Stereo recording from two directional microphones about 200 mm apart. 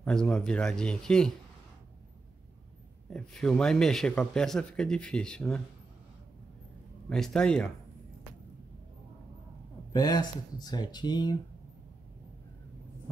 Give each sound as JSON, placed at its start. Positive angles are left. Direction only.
{"t": 0.0, "sound": "speech", "side_deg": 5}
{"t": 3.1, "sound": "speech", "side_deg": 5}
{"t": 7.1, "sound": "speech", "side_deg": 5}
{"t": 9.9, "sound": "speech", "side_deg": 20}